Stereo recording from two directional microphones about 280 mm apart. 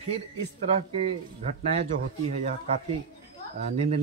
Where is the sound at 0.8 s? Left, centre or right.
Right.